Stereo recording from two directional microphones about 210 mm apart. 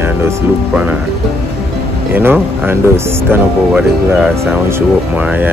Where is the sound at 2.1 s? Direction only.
10° right (ahead or behind).